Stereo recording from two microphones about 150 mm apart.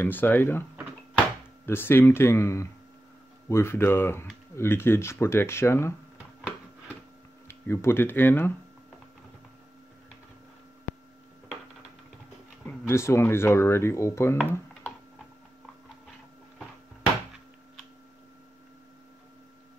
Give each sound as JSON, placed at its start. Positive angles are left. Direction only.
{"t": 0.0, "sound": "speech", "side_deg": 10}
{"t": 1.7, "sound": "speech", "side_deg": 15}
{"t": 7.4, "sound": "speech", "side_deg": 15}
{"t": 12.6, "sound": "speech", "side_deg": 15}